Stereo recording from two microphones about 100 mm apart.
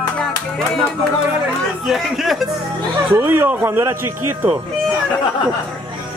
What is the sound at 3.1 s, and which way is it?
Speech, 20° right (ahead or behind).